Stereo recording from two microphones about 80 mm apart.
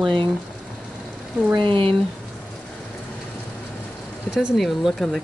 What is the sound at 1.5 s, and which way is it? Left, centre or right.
Speech, right.